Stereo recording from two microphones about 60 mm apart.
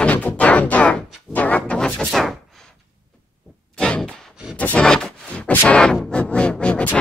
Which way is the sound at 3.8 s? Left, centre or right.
Centre.